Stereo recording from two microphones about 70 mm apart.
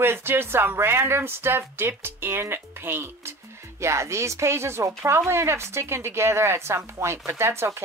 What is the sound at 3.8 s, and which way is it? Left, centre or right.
A woman's voice, right.